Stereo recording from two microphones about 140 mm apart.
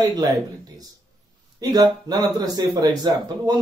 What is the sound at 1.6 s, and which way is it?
Speech, 25° right (ahead or behind).